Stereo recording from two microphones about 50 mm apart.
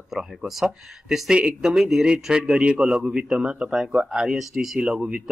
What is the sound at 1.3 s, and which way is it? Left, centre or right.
Speech, right.